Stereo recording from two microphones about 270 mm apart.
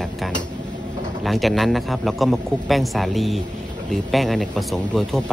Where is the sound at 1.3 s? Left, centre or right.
Centre.